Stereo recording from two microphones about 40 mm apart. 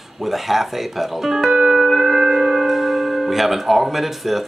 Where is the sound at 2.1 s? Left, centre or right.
Centre.